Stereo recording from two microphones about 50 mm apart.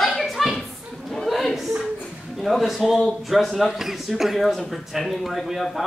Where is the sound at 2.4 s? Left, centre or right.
Centre.